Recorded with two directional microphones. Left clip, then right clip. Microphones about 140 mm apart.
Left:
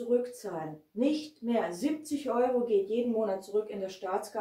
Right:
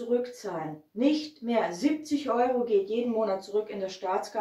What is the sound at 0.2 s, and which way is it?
Speech, 20° left (ahead or behind).